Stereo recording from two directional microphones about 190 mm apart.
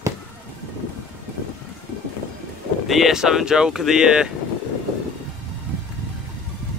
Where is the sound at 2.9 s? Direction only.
Centre (ahead or behind).